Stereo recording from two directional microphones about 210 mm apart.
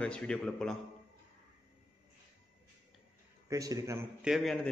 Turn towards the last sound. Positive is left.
turn(degrees=0)  # may be behind; listen again after turning